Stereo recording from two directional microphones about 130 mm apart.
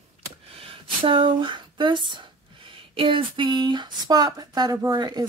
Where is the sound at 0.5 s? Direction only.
45° right (ahead or behind).